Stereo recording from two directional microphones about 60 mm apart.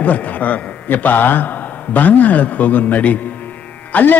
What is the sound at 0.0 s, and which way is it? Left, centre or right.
A man's voice, left.